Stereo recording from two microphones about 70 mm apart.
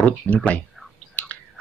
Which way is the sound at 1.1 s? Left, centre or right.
Centre.